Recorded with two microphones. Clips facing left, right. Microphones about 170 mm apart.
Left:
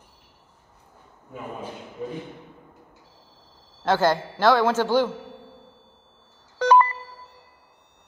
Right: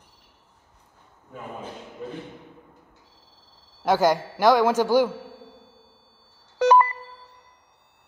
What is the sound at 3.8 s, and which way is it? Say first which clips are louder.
A woman's voice: right 1 dB; 10° right (ahead or behind).